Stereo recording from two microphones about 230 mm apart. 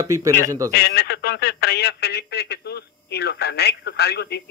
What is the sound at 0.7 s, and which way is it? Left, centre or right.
Speech, left.